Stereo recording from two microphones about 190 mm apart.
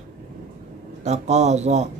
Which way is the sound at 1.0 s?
35° right (ahead or behind).